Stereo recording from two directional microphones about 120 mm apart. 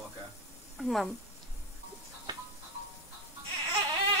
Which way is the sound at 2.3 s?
35° right (ahead or behind).